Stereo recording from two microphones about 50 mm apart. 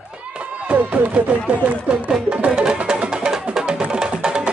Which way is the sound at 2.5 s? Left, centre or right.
Centre.